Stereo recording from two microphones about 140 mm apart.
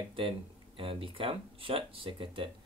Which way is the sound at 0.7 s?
40° right (ahead or behind).